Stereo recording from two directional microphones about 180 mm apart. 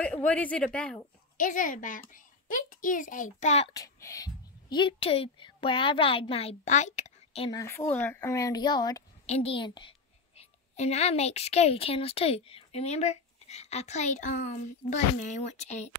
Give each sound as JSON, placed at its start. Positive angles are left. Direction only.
{"t": 0.0, "sound": "speech", "side_deg": 5}
{"t": 1.3, "sound": "a child's voice", "side_deg": 45}
{"t": 3.7, "sound": "a woman's voice", "side_deg": 20}
{"t": 7.5, "sound": "speech", "side_deg": 15}
{"t": 9.2, "sound": "a woman's voice", "side_deg": 35}